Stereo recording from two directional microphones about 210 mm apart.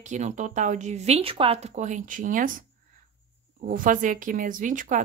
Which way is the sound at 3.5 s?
40° right (ahead or behind).